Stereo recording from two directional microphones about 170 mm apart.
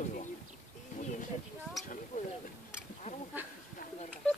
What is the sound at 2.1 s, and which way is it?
Wild animals, 45° left (ahead or behind).